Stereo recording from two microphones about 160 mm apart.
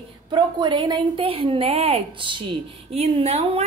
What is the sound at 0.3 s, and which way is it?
A woman's voice, 30° right (ahead or behind).